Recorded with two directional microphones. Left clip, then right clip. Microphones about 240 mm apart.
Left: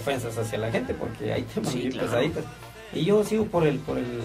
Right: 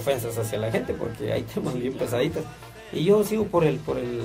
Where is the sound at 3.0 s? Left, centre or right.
Right.